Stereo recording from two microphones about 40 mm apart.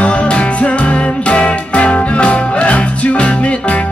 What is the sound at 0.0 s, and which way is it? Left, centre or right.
Music, left.